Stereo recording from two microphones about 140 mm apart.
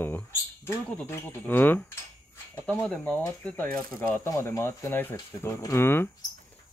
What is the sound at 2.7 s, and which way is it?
Speech, 5° left (ahead or behind).